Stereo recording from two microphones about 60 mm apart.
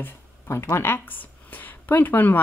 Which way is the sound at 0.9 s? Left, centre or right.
Left.